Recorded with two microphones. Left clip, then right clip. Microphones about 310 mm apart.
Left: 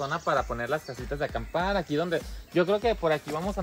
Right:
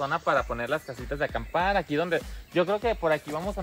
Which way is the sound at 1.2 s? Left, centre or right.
Centre.